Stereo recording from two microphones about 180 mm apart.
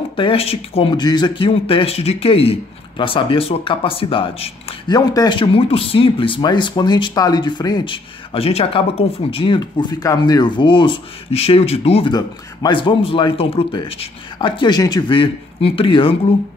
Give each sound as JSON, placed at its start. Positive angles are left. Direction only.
{"t": 0.1, "sound": "speech", "side_deg": 30}
{"t": 12.1, "sound": "speech", "side_deg": 25}